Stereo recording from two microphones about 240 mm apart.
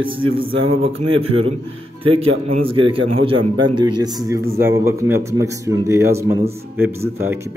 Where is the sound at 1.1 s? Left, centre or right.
Right.